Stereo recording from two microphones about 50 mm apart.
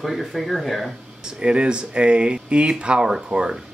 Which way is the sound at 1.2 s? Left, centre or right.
Centre.